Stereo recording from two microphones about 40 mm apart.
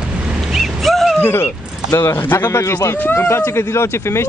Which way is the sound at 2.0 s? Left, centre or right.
Left.